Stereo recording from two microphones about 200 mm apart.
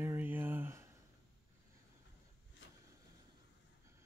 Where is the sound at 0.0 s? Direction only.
10° right (ahead or behind).